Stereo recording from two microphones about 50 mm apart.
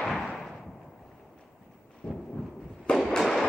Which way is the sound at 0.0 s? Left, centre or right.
Centre.